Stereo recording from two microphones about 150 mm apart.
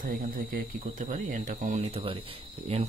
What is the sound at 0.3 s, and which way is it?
Speech, 70° right (ahead or behind).